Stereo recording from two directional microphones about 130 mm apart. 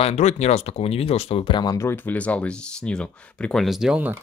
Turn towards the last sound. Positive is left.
turn(degrees=-10)  # may be behind; listen again after turning